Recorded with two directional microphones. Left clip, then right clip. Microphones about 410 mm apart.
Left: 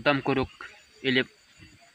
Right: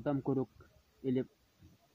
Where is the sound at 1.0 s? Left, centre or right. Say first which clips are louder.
Left 11 dB; right.